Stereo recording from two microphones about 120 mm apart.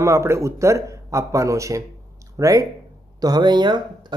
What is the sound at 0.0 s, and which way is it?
Speech, 25° right (ahead or behind).